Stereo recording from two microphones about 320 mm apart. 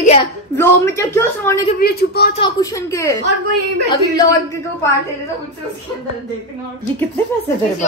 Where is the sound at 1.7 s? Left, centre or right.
Left.